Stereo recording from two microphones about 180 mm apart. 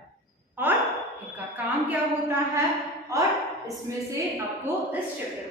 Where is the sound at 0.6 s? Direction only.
10° right (ahead or behind).